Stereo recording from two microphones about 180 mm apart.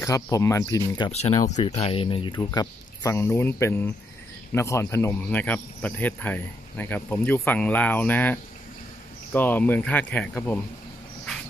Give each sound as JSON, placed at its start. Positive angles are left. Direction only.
{"t": 0.0, "sound": "speech", "side_deg": 15}
{"t": 1.1, "sound": "speech", "side_deg": 40}